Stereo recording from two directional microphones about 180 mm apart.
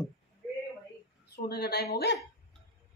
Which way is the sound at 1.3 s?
60° left (ahead or behind).